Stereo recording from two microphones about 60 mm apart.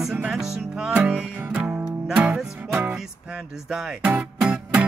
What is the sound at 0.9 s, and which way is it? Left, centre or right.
Music, right.